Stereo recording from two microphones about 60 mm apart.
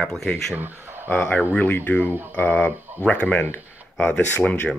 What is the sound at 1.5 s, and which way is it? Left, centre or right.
Speech, left.